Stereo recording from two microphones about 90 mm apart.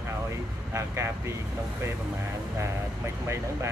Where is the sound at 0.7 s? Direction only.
30° right (ahead or behind).